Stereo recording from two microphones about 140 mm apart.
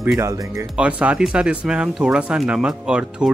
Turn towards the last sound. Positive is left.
turn(degrees=-5)  # may be behind; listen again after turning